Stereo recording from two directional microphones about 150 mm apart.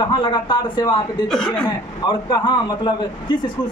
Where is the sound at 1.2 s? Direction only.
Centre (ahead or behind).